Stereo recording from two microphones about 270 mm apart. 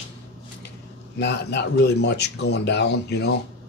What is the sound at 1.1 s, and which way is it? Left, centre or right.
Speech, left.